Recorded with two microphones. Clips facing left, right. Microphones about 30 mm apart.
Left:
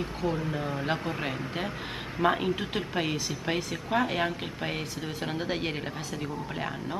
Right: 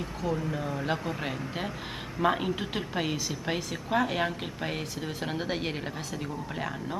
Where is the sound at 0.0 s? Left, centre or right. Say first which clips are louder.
Left 1 dB; centre.